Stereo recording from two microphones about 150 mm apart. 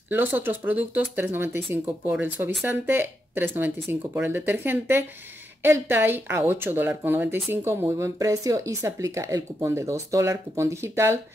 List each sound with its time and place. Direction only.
0.1 s speech: 15° right (ahead or behind)